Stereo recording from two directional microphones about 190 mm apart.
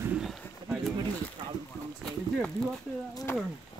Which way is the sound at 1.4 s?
20° right (ahead or behind).